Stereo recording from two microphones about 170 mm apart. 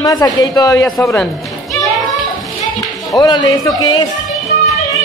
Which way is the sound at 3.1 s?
25° left (ahead or behind).